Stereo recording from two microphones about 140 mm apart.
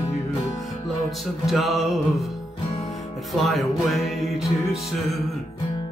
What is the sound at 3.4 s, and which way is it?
Music, centre (ahead or behind).